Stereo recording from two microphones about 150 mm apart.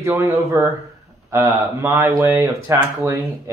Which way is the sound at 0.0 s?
20° right (ahead or behind).